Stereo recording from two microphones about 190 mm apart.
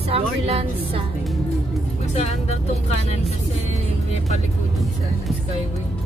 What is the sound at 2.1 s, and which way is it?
Speech, 35° left (ahead or behind).